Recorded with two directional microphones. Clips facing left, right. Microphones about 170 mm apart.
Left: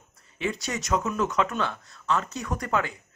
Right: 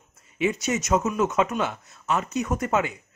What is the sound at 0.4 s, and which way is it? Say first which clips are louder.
A man's voice: right 5 dB; 20° right (ahead or behind).